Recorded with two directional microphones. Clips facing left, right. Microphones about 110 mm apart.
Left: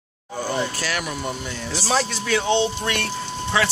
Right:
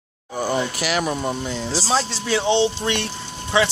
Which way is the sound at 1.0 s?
30° right (ahead or behind).